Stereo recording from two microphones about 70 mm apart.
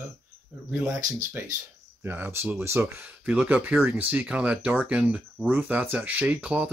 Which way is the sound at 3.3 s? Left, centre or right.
Centre.